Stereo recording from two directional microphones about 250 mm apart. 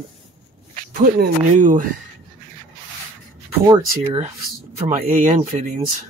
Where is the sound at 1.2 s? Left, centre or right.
Right.